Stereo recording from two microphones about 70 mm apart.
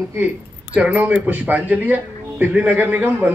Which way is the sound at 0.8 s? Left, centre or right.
Centre.